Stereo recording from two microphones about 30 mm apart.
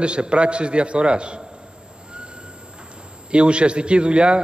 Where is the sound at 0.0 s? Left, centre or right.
Right.